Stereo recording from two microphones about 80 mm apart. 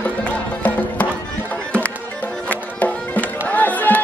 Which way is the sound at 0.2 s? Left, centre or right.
Centre.